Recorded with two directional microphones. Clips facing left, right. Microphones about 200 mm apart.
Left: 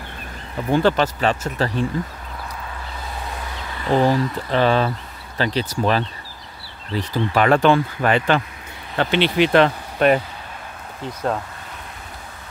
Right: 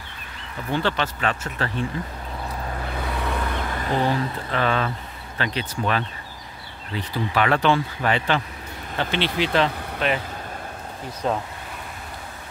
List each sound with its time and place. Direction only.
0.7 s speech: 45° left (ahead or behind)
2.9 s vehicle: 65° right (ahead or behind)
3.9 s speech: 35° left (ahead or behind)
6.9 s speech: 40° left (ahead or behind)
8.9 s speech: 60° left (ahead or behind)